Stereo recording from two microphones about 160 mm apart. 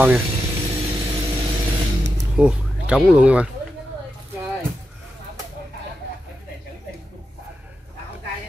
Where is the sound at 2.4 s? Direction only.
5° right (ahead or behind).